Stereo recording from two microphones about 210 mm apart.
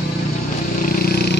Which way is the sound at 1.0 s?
45° left (ahead or behind).